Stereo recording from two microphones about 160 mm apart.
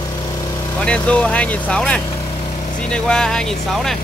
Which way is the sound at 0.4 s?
25° left (ahead or behind).